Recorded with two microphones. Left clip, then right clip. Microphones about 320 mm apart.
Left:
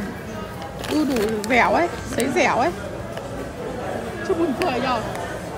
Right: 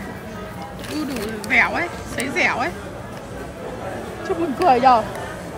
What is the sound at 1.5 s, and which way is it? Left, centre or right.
Speech, centre.